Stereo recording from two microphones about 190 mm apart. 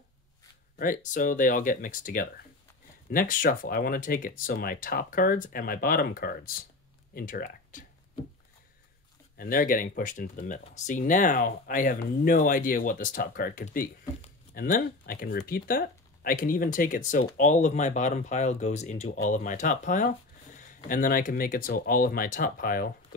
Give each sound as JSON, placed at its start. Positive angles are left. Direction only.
{"t": 0.7, "sound": "speech", "side_deg": 45}
{"t": 9.4, "sound": "speech", "side_deg": 50}